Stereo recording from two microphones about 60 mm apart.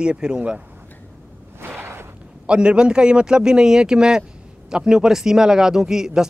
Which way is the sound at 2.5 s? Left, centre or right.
Centre.